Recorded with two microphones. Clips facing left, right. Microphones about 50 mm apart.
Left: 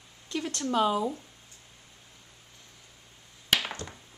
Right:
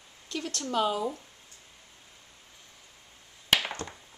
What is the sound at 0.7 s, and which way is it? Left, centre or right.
Speech, left.